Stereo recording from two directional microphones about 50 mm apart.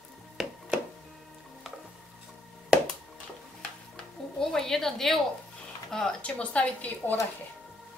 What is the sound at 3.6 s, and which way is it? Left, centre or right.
Music, centre.